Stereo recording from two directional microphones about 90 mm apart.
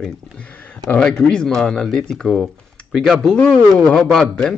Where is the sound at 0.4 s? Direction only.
15° left (ahead or behind).